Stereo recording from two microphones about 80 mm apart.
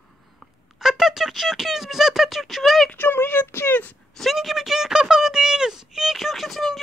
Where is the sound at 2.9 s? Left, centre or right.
Left.